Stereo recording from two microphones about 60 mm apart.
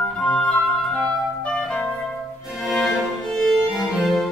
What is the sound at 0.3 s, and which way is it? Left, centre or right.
Music, centre.